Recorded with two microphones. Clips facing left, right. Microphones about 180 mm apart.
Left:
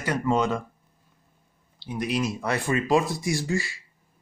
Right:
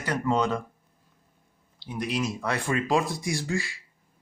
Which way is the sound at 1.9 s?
5° left (ahead or behind).